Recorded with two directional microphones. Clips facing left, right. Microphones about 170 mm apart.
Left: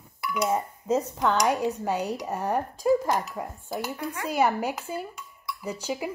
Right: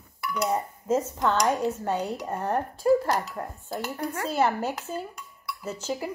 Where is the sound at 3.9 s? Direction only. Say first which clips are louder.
Right 2 dB; 35° right (ahead or behind).